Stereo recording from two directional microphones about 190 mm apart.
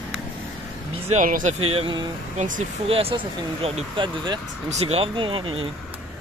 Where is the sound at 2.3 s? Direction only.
45° right (ahead or behind).